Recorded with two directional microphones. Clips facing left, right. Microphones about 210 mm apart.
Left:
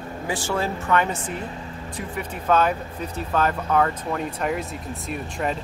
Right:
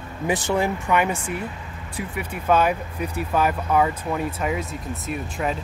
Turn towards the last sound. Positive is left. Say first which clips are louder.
# right 1 dB
turn(degrees=0)  # may be behind; listen again after turning